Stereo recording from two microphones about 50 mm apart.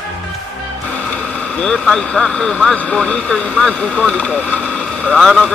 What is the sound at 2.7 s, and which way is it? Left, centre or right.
Speech, left.